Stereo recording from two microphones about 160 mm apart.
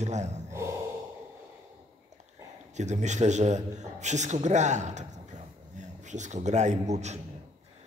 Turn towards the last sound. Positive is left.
turn(degrees=-45)  # may be behind; listen again after turning